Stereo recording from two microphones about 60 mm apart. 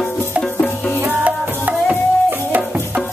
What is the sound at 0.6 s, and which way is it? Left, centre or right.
Music, left.